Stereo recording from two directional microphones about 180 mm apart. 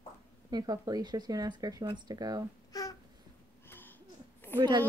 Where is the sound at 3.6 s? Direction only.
10° left (ahead or behind).